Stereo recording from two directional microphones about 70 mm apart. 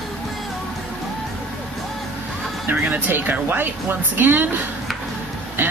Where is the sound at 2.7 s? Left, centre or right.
Right.